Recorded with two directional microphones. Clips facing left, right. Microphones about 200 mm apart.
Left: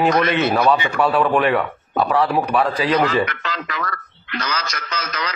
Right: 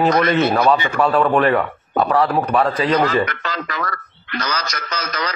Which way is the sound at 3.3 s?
40° right (ahead or behind).